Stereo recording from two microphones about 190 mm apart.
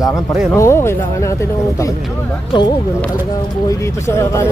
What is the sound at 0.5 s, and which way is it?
Speech, 15° left (ahead or behind).